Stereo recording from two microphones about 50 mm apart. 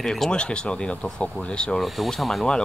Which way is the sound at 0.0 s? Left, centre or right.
Centre.